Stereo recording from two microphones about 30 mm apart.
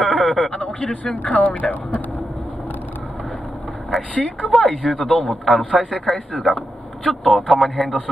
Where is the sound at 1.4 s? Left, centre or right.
Left.